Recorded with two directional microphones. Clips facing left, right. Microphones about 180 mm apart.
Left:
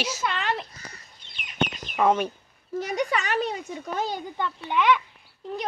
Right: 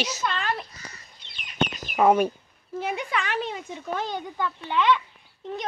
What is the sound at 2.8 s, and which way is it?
Speech, 40° left (ahead or behind).